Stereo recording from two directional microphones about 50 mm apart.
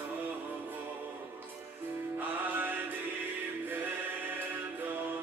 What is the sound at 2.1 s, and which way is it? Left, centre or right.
Music, right.